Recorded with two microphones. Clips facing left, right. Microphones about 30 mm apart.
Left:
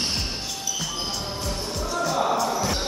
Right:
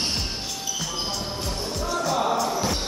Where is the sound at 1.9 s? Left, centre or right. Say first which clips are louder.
Even; centre.